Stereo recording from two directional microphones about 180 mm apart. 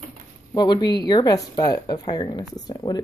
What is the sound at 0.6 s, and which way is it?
A woman's voice, 20° left (ahead or behind).